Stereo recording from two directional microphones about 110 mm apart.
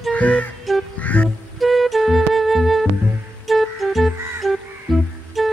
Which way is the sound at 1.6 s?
Centre (ahead or behind).